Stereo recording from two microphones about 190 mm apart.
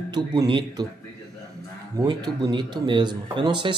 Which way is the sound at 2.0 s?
20° right (ahead or behind).